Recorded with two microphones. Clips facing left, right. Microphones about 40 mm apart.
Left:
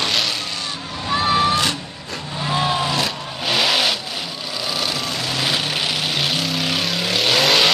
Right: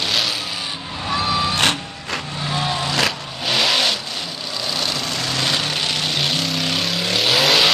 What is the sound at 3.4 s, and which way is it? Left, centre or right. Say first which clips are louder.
Vehicle: even; centre.